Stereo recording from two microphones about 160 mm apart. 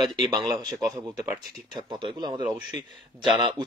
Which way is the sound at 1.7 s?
30° right (ahead or behind).